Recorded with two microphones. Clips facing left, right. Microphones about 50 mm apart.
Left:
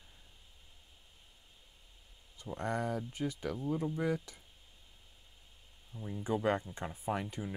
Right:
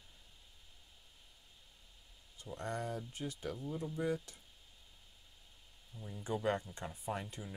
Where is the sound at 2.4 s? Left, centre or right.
Left.